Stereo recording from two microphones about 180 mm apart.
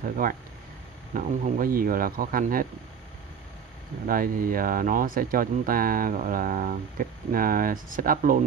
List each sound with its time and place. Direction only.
0.0 s speech: 50° right (ahead or behind)
4.1 s speech: 50° right (ahead or behind)